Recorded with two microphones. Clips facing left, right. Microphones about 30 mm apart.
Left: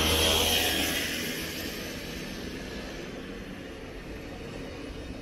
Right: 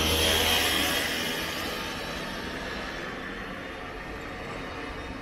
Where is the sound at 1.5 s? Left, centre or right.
Right.